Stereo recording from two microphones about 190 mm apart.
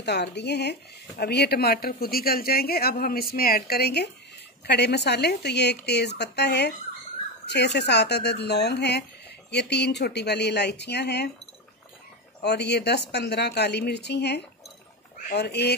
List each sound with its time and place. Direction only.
0.0 s speech: 60° left (ahead or behind)
12.4 s speech: 60° left (ahead or behind)